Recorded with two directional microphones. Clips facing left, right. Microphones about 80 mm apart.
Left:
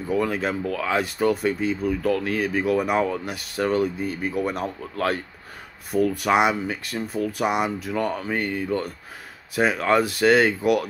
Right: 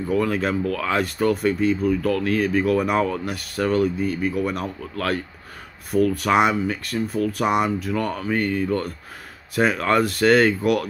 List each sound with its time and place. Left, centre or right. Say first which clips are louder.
0.1 s speech: right 2 dB; centre
7.9 s speech: right 1 dB; centre